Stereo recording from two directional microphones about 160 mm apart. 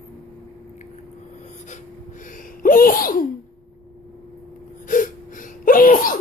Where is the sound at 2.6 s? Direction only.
65° left (ahead or behind).